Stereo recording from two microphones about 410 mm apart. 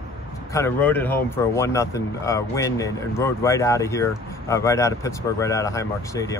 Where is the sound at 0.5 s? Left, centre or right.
Centre.